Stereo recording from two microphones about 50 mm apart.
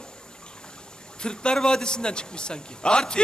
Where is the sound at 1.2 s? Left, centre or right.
Centre.